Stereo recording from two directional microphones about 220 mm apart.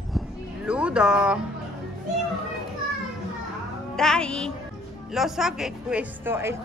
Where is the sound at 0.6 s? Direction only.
5° right (ahead or behind).